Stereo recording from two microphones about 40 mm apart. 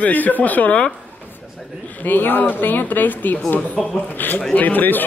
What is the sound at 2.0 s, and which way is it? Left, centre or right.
Speech, left.